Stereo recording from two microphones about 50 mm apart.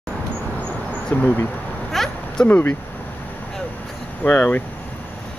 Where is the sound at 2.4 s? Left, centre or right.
Left.